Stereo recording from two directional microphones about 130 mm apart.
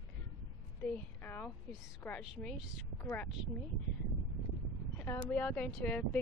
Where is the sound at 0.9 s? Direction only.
15° left (ahead or behind).